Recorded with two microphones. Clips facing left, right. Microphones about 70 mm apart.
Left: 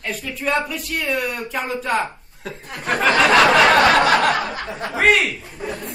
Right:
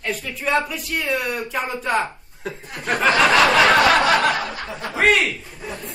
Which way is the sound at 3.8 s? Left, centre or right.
Left.